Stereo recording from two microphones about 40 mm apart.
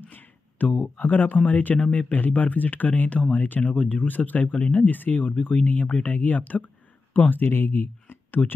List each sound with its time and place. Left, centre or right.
0.0 s a sound: left
0.9 s speech: left
2.1 s speech: left